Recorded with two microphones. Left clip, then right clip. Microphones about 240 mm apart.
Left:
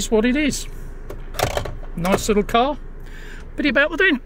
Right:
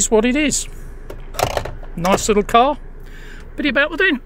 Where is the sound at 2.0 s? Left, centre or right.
Right.